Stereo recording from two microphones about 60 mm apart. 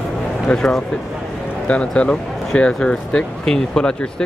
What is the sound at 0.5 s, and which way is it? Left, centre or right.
Speech, centre.